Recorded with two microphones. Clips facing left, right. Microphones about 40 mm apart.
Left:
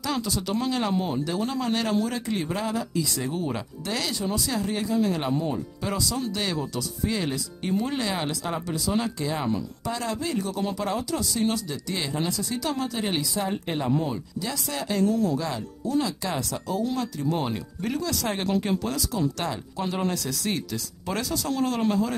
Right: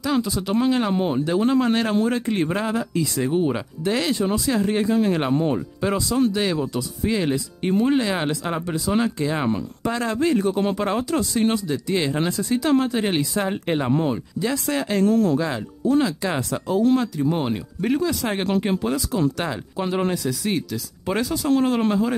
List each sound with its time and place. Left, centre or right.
0.0 s speech: centre; by 5.6 s right
5.8 s speech: right
6.3 s speech: centre
9.5 s speech: right
15.0 s speech: right
15.3 s speech: right
20.2 s speech: centre
21.5 s speech: right